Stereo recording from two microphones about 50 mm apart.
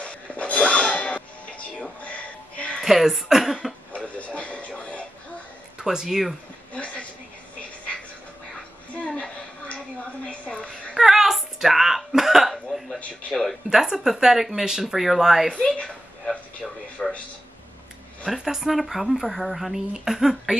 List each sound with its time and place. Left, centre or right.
0.0 s music: left
2.8 s speech: centre
3.9 s television: left
5.8 s speech: centre
6.7 s a sound: left
8.9 s a sound: left
11.0 s hiccup: centre
13.3 s speech: centre
13.7 s speech: centre
16.3 s a sound: centre
18.3 s speech: centre